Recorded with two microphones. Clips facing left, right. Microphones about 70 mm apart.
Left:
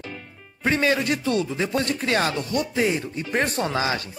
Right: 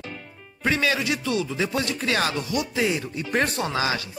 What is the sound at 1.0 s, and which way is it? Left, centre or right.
Speech, left.